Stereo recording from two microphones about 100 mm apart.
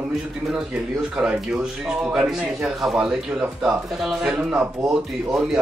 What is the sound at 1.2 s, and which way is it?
Speech, 10° right (ahead or behind).